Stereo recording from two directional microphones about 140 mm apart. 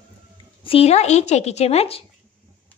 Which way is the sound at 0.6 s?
45° left (ahead or behind).